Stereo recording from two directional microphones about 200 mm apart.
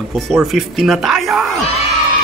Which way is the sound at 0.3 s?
Centre (ahead or behind).